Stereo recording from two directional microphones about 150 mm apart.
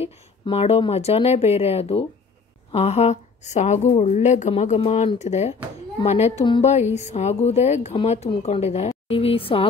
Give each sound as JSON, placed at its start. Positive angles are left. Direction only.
{"t": 0.0, "sound": "speech", "side_deg": 40}